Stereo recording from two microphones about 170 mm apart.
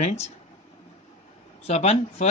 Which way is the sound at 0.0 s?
40° left (ahead or behind).